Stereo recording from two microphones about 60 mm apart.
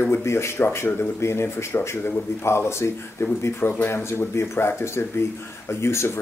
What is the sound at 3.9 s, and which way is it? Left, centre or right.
Speech, left.